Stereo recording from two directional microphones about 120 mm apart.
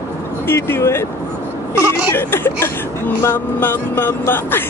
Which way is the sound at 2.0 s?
20° left (ahead or behind).